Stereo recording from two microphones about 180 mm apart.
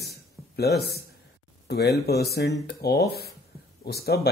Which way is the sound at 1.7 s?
65° left (ahead or behind).